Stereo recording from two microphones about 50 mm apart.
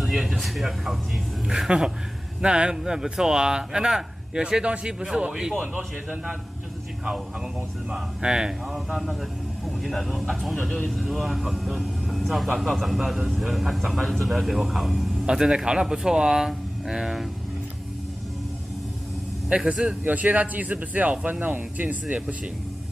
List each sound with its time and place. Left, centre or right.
0.0 s speech: centre
2.4 s speech: centre
7.9 s speech: centre
8.7 s speech: centre
15.2 s speech: centre
19.7 s speech: right
20.0 s speech: right